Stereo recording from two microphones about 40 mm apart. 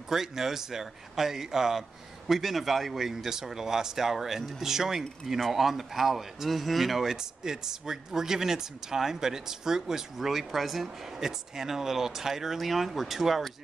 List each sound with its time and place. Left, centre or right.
0.1 s speech: centre
7.2 s speech: centre